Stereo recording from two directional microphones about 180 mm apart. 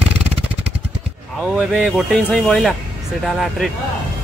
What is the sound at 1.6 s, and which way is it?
Speech, centre (ahead or behind).